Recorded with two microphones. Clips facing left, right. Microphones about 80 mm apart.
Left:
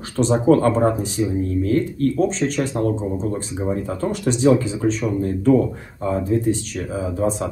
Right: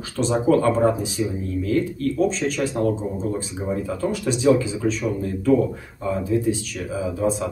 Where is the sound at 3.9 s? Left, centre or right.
Left.